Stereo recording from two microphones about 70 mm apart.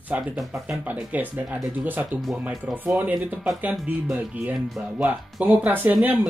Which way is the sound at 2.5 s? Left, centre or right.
Centre.